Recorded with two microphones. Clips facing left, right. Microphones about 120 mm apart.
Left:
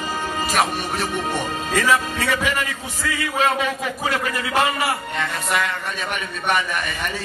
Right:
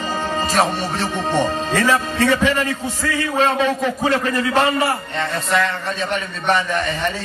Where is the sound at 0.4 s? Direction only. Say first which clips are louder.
Right 3 dB; 30° right (ahead or behind).